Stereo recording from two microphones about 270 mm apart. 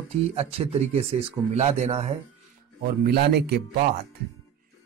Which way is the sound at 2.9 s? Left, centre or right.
Right.